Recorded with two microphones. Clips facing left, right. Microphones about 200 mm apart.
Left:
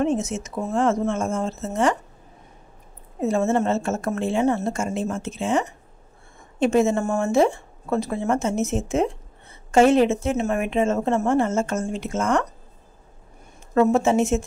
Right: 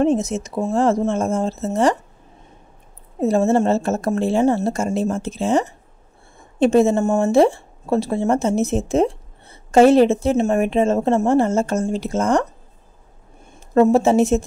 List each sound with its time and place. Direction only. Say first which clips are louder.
0.0 s speech: right 5 dB; 35° right (ahead or behind)
3.2 s speech: right 4 dB; 35° right (ahead or behind)
13.7 s speech: right 4 dB; 35° right (ahead or behind)